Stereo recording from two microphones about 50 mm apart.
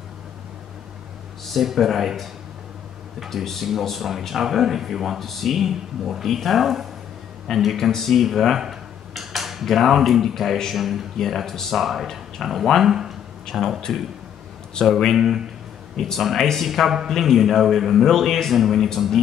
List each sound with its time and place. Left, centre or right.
1.4 s speech: centre
3.3 s speech: centre
12.8 s speech: centre
13.5 s speech: centre
14.8 s speech: centre
15.1 s a man's voice: centre
17.1 s speech: centre